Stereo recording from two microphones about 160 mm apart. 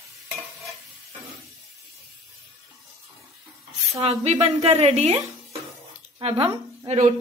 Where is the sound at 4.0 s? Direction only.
40° right (ahead or behind).